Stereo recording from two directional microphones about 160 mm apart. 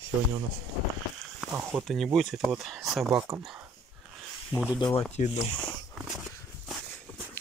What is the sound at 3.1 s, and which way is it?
Speech, 20° right (ahead or behind).